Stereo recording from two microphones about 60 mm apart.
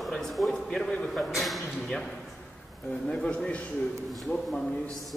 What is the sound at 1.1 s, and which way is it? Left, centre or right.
Speech, centre.